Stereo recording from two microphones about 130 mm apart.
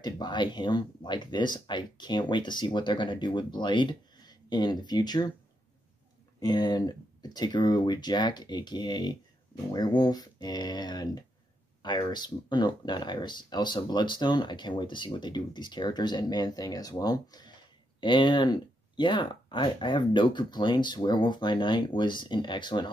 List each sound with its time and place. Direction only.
0.0 s speech: 35° left (ahead or behind)
6.4 s speech: 35° left (ahead or behind)